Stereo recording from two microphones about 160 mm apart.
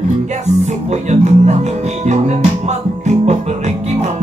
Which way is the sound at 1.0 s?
45° right (ahead or behind).